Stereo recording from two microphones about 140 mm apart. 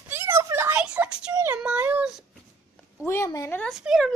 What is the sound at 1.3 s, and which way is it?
Child singing, 25° right (ahead or behind).